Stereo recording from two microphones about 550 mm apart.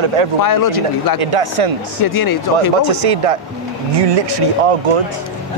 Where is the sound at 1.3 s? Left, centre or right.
Right.